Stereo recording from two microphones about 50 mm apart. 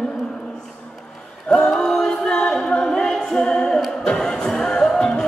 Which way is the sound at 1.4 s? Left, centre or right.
Centre.